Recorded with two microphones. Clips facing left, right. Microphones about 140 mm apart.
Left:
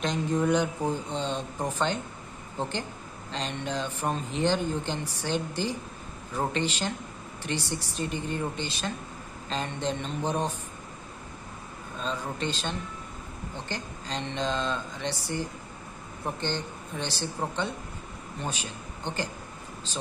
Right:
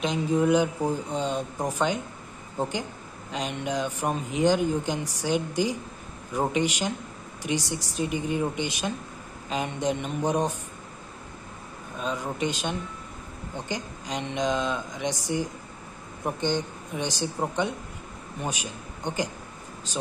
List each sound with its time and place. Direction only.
0.0 s speech: 5° right (ahead or behind)
3.3 s speech: 10° right (ahead or behind)
12.0 s a man's voice: 10° right (ahead or behind)